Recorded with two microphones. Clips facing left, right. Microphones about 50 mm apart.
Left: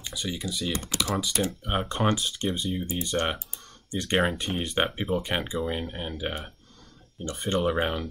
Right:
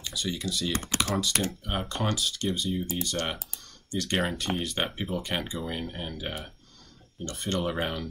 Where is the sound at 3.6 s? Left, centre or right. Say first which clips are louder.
Even; left.